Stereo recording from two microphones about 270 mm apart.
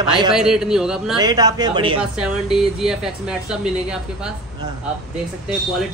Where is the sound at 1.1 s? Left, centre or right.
Centre.